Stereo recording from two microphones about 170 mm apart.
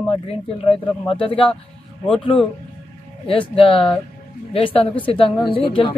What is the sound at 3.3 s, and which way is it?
Speech, 35° left (ahead or behind).